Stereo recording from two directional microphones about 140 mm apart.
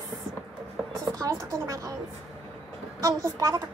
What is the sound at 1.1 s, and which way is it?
Speech, 25° right (ahead or behind).